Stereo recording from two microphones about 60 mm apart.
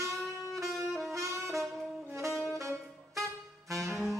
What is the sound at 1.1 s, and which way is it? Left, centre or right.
Saxophone, right.